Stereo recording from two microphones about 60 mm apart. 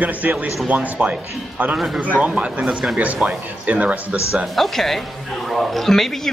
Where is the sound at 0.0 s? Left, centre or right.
Right.